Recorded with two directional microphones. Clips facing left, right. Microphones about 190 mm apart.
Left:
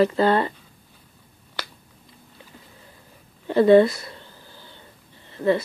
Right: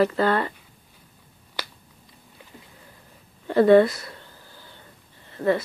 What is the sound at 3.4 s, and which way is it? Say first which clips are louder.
Speech: left 1 dB; 25° left (ahead or behind).